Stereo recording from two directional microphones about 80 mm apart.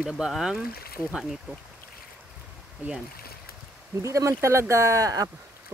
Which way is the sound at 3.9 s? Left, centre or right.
Right.